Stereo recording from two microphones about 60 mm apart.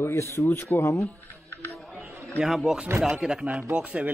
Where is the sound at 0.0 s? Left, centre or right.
Left.